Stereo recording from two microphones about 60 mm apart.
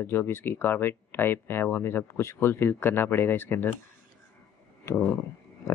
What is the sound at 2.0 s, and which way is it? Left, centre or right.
Speech, left.